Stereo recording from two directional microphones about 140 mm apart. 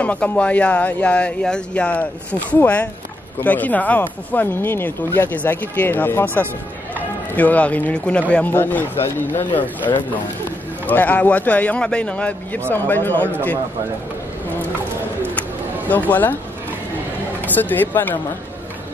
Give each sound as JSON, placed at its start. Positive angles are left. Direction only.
{"t": 0.0, "sound": "speech", "side_deg": 10}
{"t": 9.9, "sound": "speech", "side_deg": 25}
{"t": 10.9, "sound": "speech", "side_deg": 10}
{"t": 15.9, "sound": "speech", "side_deg": 10}
{"t": 17.4, "sound": "speech", "side_deg": 10}